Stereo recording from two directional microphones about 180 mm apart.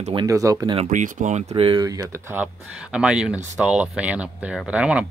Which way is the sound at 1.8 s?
20° right (ahead or behind).